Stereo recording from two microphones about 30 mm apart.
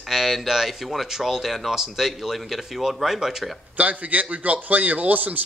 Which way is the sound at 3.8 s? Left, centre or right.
Right.